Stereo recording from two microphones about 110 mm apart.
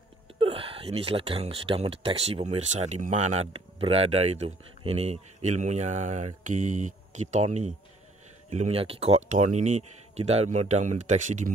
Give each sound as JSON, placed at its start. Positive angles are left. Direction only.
{"t": 0.4, "sound": "speech", "side_deg": -55}